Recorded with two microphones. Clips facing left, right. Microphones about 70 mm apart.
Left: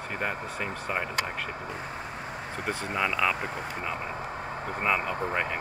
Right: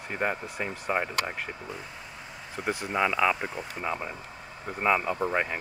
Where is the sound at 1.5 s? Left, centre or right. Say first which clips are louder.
Left 4 dB; left.